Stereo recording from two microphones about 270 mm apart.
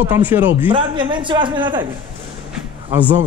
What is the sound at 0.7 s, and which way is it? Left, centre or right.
A man's voice, centre.